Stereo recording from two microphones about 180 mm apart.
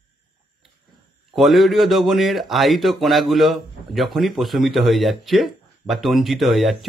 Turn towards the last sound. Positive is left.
turn(degrees=0)  # may be behind; listen again after turning